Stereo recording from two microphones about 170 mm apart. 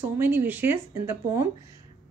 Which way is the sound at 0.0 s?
10° right (ahead or behind).